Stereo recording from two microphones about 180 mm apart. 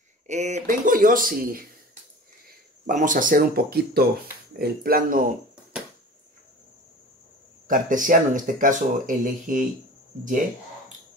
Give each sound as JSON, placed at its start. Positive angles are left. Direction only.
{"t": 0.3, "sound": "speech", "side_deg": -40}
{"t": 2.9, "sound": "speech", "side_deg": -45}
{"t": 7.6, "sound": "speech", "side_deg": -50}